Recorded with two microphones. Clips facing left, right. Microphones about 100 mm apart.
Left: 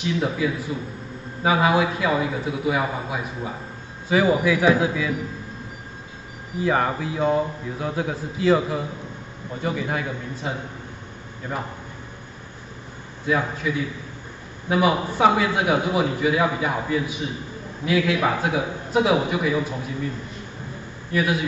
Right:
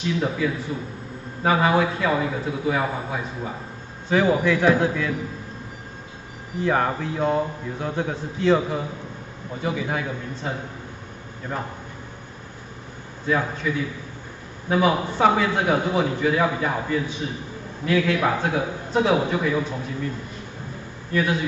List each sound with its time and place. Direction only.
0.0 s a man's voice: 5° left (ahead or behind)
6.6 s speech: centre (ahead or behind)
11.5 s a man's voice: 10° left (ahead or behind)
13.3 s a man's voice: 5° left (ahead or behind)
21.1 s a man's voice: 10° left (ahead or behind)